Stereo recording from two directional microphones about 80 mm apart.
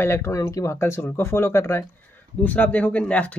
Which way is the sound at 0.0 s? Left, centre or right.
Left.